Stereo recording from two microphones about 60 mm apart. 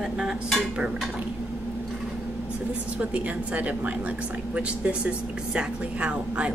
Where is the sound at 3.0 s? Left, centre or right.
Right.